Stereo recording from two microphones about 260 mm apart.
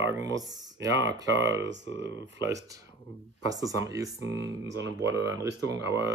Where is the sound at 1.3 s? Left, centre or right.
Right.